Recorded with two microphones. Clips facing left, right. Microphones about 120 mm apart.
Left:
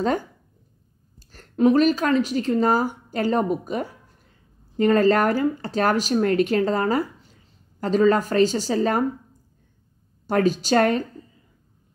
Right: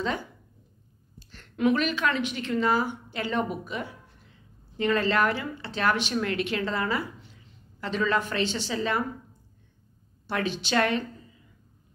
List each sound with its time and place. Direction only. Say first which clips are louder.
0.0 s speech: left 7 dB; 45° left (ahead or behind)
1.3 s a woman's voice: left 7 dB; 40° left (ahead or behind)
10.2 s a woman's voice: left 9 dB; 40° left (ahead or behind)